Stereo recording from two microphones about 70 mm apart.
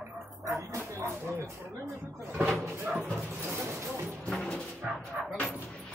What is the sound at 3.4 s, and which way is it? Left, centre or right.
Speech, right.